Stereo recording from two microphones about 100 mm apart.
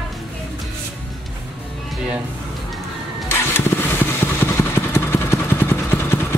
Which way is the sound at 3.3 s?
25° left (ahead or behind).